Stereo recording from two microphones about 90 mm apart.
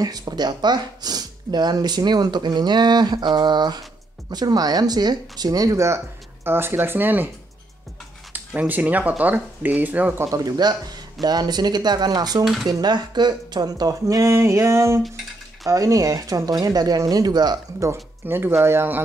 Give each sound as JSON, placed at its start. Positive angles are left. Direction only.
{"t": 0.0, "sound": "speech", "side_deg": -50}
{"t": 8.3, "sound": "speech", "side_deg": -20}
{"t": 10.3, "sound": "speech", "side_deg": -45}
{"t": 18.2, "sound": "speech", "side_deg": -25}